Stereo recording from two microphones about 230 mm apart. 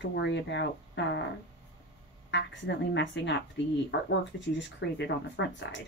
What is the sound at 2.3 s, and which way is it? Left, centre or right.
Speech, left.